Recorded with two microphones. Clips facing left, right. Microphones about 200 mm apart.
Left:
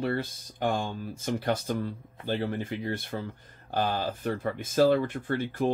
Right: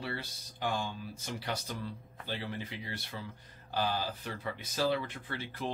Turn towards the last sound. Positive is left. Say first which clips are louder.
# left 11 dB
turn(degrees=50)  # may be behind; listen again after turning